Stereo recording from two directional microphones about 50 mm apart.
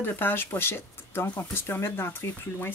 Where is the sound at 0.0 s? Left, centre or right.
Left.